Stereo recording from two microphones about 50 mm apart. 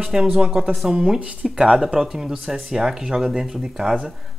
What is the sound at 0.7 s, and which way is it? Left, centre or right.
Speech, centre.